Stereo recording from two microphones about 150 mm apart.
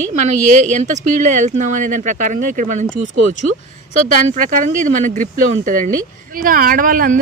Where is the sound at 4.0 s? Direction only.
60° right (ahead or behind).